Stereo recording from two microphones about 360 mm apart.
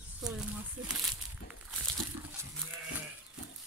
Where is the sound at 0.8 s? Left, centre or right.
Centre.